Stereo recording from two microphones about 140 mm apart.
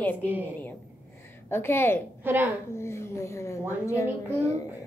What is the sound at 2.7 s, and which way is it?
A child's voice, 20° left (ahead or behind).